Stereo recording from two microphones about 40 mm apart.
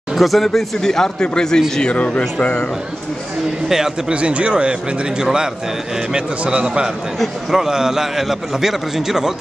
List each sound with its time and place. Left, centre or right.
0.1 s speech: centre
0.6 s speech: centre
1.8 s speech: left
2.3 s a man's voice: left
3.6 s a man's voice: centre
4.1 s a man's voice: right
5.2 s a man's voice: centre